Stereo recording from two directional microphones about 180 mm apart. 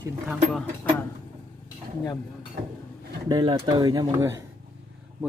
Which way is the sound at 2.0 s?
25° left (ahead or behind).